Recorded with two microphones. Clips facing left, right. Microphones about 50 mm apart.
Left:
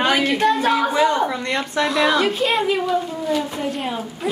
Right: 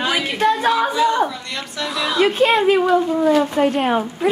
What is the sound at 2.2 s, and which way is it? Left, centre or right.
Speech, right.